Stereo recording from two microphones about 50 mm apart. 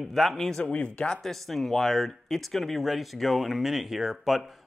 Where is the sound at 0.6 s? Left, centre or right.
Left.